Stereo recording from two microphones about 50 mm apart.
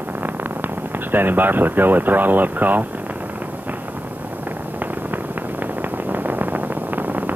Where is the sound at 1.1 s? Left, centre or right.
Right.